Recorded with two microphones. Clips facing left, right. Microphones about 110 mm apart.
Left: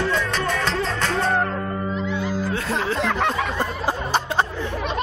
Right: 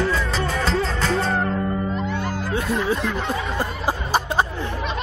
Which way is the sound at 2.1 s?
55° right (ahead or behind).